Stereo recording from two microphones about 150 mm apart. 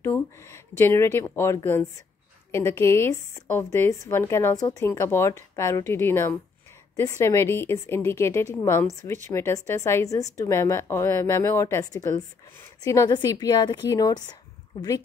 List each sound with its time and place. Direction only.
0.0 s a woman's voice: 20° left (ahead or behind)